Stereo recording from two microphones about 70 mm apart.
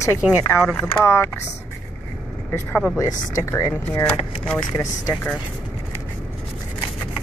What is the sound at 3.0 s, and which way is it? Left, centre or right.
Speech, left.